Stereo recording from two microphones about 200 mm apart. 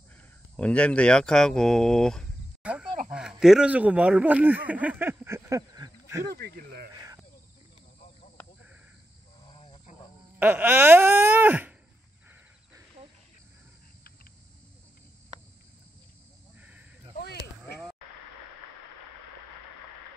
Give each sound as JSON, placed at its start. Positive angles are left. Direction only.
{"t": 0.6, "sound": "speech", "side_deg": 5}
{"t": 6.2, "sound": "speech", "side_deg": -50}
{"t": 9.5, "sound": "cricket", "side_deg": 25}
{"t": 10.4, "sound": "speech", "side_deg": -10}
{"t": 17.2, "sound": "a sound", "side_deg": 55}